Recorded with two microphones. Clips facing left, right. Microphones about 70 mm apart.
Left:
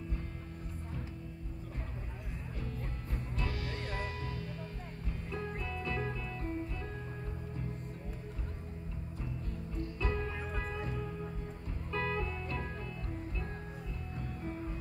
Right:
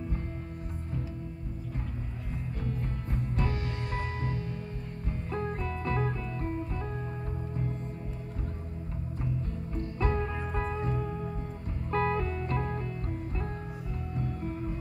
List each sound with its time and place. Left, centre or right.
2.6 s music: right
9.9 s music: right
14.1 s music: right